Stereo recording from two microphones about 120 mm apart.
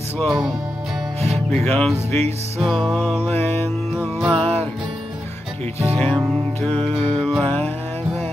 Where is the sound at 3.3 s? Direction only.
15° left (ahead or behind).